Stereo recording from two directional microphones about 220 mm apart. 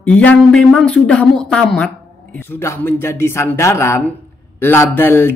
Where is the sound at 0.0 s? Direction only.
5° left (ahead or behind).